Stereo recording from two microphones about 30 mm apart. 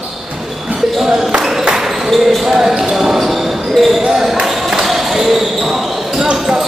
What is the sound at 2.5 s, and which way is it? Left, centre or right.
Basketball bounce, centre.